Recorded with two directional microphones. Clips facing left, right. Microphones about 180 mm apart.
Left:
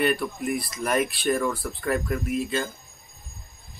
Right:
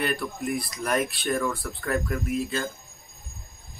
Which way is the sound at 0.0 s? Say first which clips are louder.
Left 4 dB; centre (ahead or behind).